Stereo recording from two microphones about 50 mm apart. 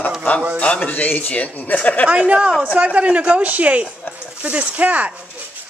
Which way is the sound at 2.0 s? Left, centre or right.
Right.